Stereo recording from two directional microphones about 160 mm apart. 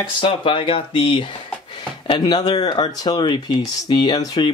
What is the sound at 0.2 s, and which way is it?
Speech, 30° left (ahead or behind).